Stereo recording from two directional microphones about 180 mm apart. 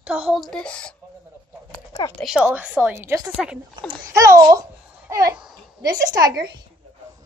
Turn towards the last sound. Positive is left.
turn(degrees=-20)  # may be behind; listen again after turning